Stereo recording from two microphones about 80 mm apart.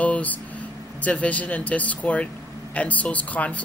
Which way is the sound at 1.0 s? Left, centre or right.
Centre.